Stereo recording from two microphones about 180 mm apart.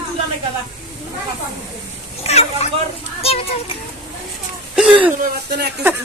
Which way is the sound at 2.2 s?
35° left (ahead or behind).